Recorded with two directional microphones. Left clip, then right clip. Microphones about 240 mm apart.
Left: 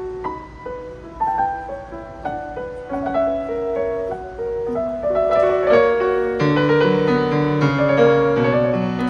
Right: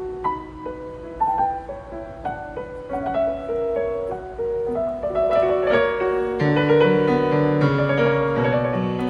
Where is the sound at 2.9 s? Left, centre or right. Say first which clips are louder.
Left 2 dB; centre.